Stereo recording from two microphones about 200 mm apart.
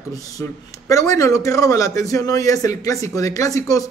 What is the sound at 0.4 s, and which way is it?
Speech, 15° left (ahead or behind).